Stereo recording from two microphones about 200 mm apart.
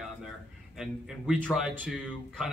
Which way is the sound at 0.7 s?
Centre (ahead or behind).